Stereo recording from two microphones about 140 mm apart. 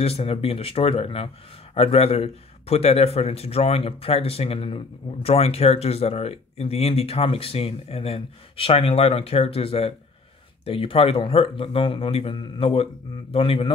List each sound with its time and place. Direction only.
0.0 s speech: 45° left (ahead or behind)